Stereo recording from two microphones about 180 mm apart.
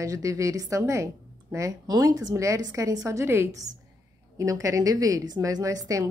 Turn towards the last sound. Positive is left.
turn(degrees=-20)  # may be behind; listen again after turning